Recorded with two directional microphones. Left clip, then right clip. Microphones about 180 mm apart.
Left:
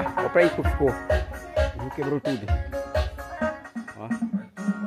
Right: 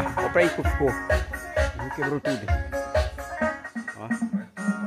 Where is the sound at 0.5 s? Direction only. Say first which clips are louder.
Left 1 dB; 15° right (ahead or behind).